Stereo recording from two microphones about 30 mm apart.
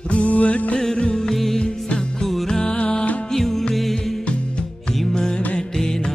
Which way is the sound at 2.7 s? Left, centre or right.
Left.